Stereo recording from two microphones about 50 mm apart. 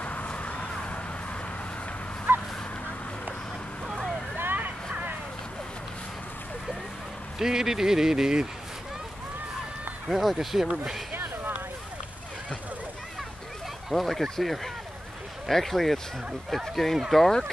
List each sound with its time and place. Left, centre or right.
0.0 s a sound: left
2.3 s a sound: right
3.8 s vehicle: centre
4.4 s vehicle: right
7.3 s speech: centre
10.0 s speech: centre
13.8 s speech: centre